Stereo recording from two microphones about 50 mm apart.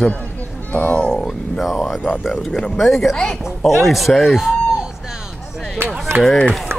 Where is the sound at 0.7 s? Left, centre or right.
Left.